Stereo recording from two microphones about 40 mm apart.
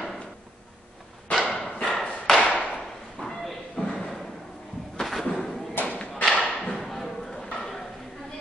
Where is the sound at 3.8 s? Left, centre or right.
Left.